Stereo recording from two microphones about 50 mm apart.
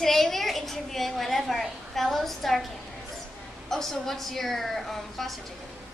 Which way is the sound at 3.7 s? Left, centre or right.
Centre.